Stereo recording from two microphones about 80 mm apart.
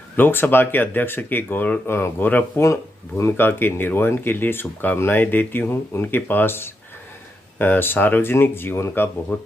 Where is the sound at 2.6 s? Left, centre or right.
Left.